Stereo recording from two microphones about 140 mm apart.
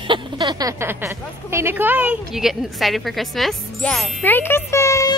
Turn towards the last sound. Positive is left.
turn(degrees=20)  # may be behind; listen again after turning